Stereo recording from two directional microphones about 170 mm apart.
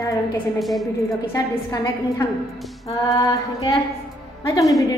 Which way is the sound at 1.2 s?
20° left (ahead or behind).